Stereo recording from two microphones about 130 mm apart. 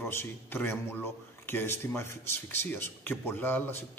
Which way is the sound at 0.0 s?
20° left (ahead or behind).